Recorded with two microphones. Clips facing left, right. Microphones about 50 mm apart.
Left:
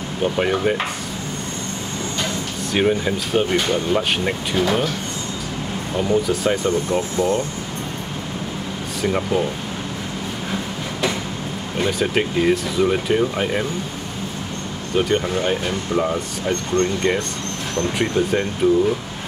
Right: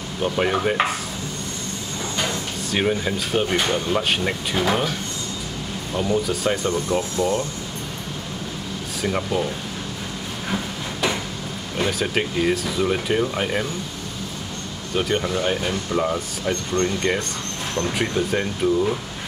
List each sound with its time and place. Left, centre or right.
0.2 s speech: centre
2.7 s speech: centre
6.2 s speech: centre
6.6 s speech: left
9.0 s speech: centre
10.5 s a sound: centre
11.8 s speech: centre
15.0 s speech: centre